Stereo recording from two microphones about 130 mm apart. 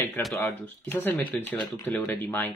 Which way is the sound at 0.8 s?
15° left (ahead or behind).